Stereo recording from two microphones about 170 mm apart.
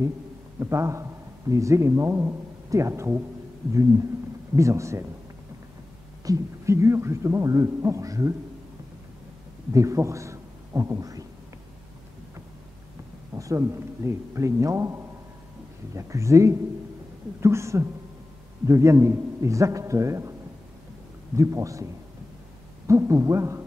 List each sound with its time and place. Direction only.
0.6 s a man's voice: 15° right (ahead or behind)
4.6 s a man's voice: 15° right (ahead or behind)
6.2 s a man's voice: 20° right (ahead or behind)
9.7 s speech: 20° right (ahead or behind)
13.3 s a man's voice: 15° right (ahead or behind)
21.4 s a man's voice: 15° right (ahead or behind)
22.8 s a man's voice: 15° right (ahead or behind)